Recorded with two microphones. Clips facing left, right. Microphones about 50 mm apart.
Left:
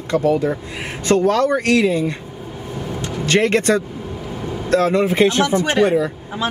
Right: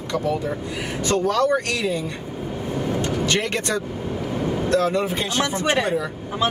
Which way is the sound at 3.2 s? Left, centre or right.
Left.